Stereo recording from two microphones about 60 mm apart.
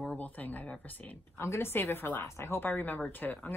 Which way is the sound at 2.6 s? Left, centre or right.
Left.